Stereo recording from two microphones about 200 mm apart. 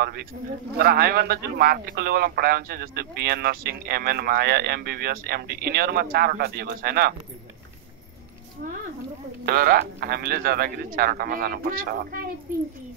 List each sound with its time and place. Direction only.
0.0 s a man's voice: 50° right (ahead or behind)
9.5 s a man's voice: 50° right (ahead or behind)